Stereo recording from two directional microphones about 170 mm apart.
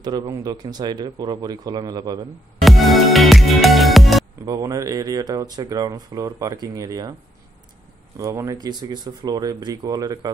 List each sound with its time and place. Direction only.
0.0 s speech: 25° right (ahead or behind)
2.6 s music: centre (ahead or behind)
4.5 s speech: 20° right (ahead or behind)
8.2 s speech: 20° right (ahead or behind)